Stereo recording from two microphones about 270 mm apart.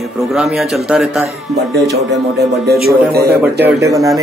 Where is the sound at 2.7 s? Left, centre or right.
Right.